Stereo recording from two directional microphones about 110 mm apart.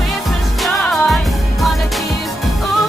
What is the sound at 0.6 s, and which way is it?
Music, centre (ahead or behind).